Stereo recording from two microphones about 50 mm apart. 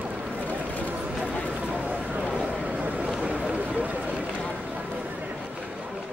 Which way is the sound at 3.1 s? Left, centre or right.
Right.